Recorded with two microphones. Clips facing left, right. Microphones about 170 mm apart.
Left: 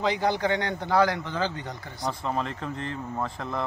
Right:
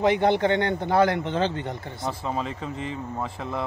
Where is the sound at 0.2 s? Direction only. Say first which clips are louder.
Right 4 dB; 25° right (ahead or behind).